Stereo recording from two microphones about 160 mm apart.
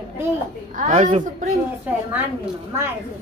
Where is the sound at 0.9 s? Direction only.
40° right (ahead or behind).